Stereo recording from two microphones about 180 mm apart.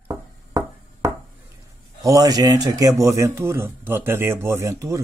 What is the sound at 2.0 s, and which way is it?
A man's voice, 20° right (ahead or behind).